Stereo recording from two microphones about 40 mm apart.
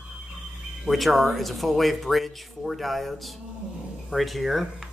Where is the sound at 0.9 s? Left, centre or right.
Centre.